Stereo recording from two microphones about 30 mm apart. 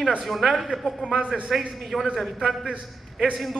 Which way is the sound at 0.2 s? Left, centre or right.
Centre.